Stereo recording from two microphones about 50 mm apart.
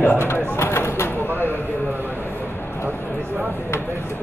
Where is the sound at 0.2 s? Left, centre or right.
Left.